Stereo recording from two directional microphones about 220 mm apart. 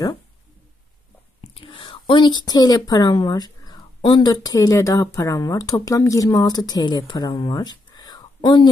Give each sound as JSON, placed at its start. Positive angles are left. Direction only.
{"t": 1.5, "sound": "speech", "side_deg": 25}